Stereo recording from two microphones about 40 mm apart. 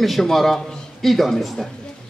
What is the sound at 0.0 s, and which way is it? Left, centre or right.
A man's voice, centre.